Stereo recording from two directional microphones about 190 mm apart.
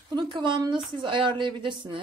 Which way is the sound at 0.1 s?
25° right (ahead or behind).